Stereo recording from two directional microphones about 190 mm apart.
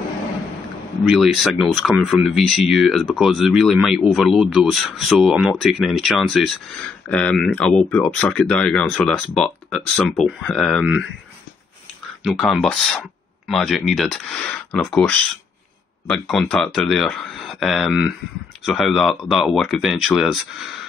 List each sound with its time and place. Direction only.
1.0 s speech: centre (ahead or behind)
12.2 s speech: centre (ahead or behind)